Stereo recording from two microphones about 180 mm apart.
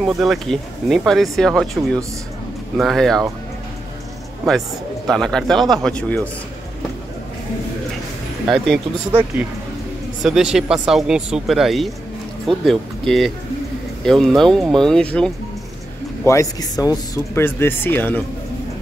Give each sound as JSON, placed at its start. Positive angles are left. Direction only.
{"t": 0.0, "sound": "speech", "side_deg": 0}
{"t": 4.5, "sound": "speech", "side_deg": 0}
{"t": 8.5, "sound": "speech", "side_deg": 0}
{"t": 10.2, "sound": "speech", "side_deg": -5}
{"t": 16.3, "sound": "speech", "side_deg": 20}